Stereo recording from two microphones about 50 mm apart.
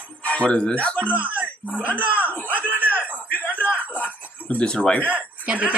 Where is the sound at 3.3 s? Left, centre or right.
Left.